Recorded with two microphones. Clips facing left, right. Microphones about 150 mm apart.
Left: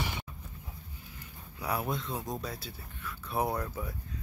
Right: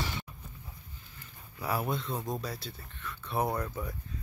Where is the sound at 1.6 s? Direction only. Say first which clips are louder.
Right 1 dB; centre (ahead or behind).